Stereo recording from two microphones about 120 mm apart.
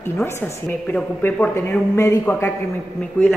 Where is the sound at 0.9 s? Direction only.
10° left (ahead or behind).